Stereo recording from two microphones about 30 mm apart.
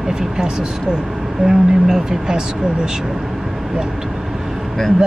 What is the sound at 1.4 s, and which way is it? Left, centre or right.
Speech, centre.